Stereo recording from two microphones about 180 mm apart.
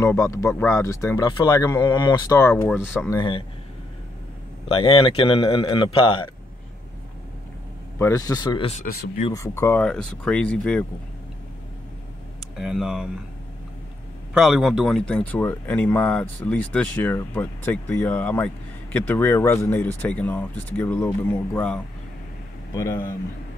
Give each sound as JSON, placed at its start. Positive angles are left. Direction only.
{"t": 0.0, "sound": "speech", "side_deg": 15}
{"t": 3.2, "sound": "speech", "side_deg": 25}
{"t": 4.6, "sound": "speech", "side_deg": 30}
{"t": 8.0, "sound": "speech", "side_deg": 20}
{"t": 8.8, "sound": "speech", "side_deg": 55}
{"t": 9.3, "sound": "speech", "side_deg": 15}
{"t": 12.5, "sound": "speech", "side_deg": -5}
{"t": 14.3, "sound": "speech", "side_deg": 0}
{"t": 22.8, "sound": "speech", "side_deg": 20}